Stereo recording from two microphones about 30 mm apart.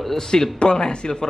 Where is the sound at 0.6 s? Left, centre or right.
Left.